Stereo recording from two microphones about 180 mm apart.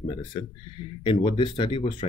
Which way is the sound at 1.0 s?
30° left (ahead or behind).